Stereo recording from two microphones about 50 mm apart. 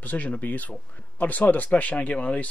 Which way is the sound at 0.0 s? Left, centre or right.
Left.